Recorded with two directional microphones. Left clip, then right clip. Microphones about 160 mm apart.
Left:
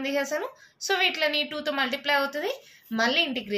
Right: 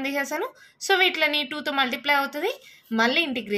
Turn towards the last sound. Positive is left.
turn(degrees=-35)  # may be behind; listen again after turning